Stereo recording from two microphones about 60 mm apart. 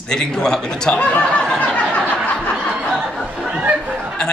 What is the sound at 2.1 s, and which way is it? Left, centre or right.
Snicker, left.